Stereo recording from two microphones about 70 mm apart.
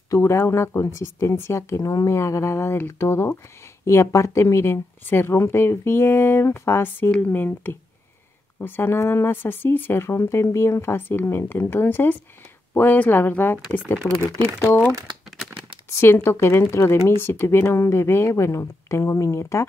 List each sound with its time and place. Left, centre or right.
0.1 s speech: left
16.0 s speech: left